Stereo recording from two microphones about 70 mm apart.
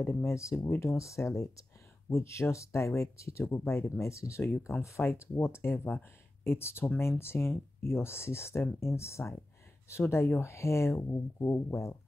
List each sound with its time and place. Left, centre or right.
0.0 s speech: left